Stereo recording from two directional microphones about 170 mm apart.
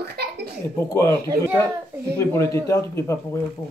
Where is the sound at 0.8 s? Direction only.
20° left (ahead or behind).